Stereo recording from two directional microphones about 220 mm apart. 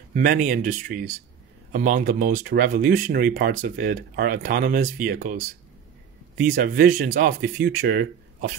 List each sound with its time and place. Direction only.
0.1 s speech: 40° right (ahead or behind)
6.5 s speech: 45° right (ahead or behind)